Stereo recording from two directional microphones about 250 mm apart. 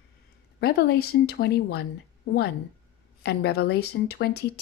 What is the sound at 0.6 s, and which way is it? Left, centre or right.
A woman's voice, left.